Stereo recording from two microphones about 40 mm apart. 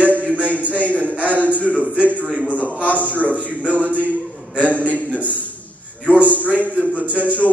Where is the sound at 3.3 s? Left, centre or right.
Right.